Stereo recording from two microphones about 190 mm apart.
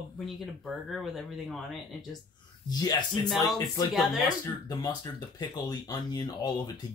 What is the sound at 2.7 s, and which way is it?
Speech, 20° left (ahead or behind).